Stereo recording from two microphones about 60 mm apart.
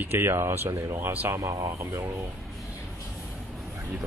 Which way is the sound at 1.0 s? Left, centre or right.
Right.